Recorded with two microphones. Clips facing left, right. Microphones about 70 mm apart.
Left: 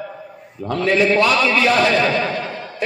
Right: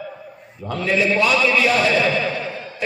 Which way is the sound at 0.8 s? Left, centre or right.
Left.